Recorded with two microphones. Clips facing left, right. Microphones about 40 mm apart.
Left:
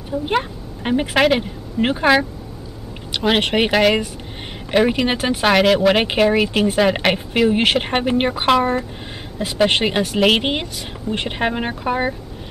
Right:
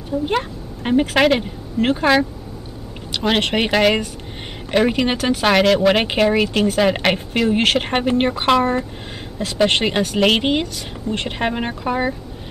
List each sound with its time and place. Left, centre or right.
0.1 s a woman's voice: centre
5.1 s speech: centre
5.4 s speech: centre